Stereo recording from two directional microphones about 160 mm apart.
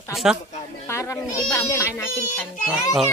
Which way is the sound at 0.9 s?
20° left (ahead or behind).